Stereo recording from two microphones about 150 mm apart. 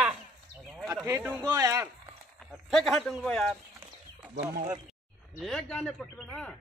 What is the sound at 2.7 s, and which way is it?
Speech, centre (ahead or behind).